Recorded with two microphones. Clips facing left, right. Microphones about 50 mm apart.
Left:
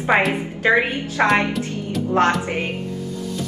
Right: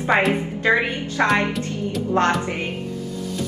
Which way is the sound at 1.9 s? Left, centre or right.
Centre.